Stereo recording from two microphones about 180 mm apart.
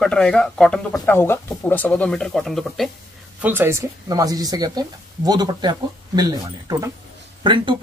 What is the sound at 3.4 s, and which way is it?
Speech, 10° right (ahead or behind).